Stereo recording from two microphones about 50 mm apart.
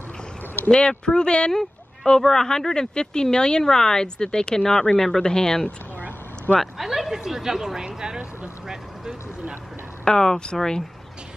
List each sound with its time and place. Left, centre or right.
0.7 s speech: centre
6.6 s speech: centre
10.0 s speech: centre